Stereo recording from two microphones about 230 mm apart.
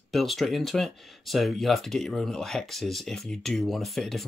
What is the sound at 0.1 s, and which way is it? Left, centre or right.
Speech, centre.